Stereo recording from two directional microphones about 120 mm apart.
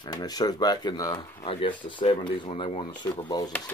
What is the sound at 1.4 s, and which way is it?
Speech, 50° left (ahead or behind).